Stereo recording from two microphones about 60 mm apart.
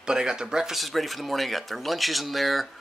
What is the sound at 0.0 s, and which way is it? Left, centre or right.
Speech, centre.